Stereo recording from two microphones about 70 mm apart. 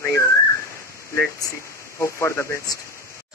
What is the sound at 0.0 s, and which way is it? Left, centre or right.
Whistling, left.